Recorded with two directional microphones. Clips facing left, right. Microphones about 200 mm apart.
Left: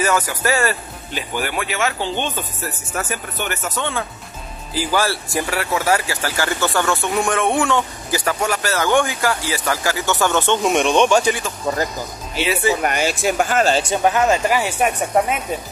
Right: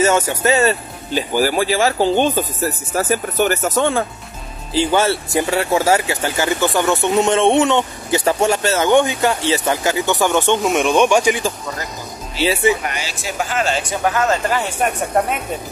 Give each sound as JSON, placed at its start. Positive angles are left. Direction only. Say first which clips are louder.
{"t": 0.0, "sound": "speech", "louder": "right 4 dB", "side_deg": -25}
{"t": 4.7, "sound": "speech", "louder": "right 4 dB", "side_deg": -25}
{"t": 10.6, "sound": "speech", "louder": "right 1 dB", "side_deg": -5}
{"t": 12.8, "sound": "speech", "louder": "left 7 dB", "side_deg": 50}
{"t": 13.8, "sound": "speech", "louder": "left 2 dB", "side_deg": 20}